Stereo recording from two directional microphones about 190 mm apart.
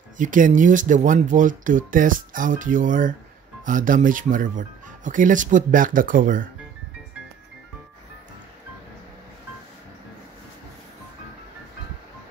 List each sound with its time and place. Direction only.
0.2 s speech: 45° right (ahead or behind)